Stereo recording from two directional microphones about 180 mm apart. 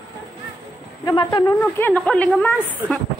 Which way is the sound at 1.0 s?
25° left (ahead or behind).